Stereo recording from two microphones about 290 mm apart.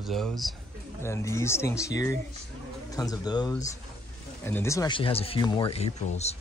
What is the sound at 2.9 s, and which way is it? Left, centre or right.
A man's voice, centre.